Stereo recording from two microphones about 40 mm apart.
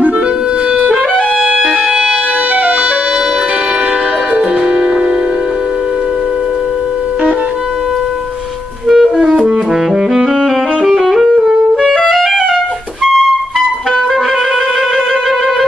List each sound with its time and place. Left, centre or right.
1.5 s music: right
8.8 s clarinet: centre
10.1 s music: centre